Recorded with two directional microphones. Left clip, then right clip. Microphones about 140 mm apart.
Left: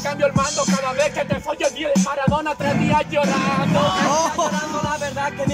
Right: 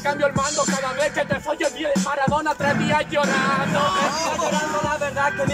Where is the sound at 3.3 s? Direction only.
15° left (ahead or behind).